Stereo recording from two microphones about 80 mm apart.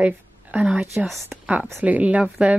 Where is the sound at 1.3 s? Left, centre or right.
Centre.